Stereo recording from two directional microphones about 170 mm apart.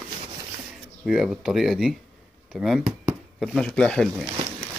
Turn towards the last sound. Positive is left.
turn(degrees=0)  # may be behind; listen again after turning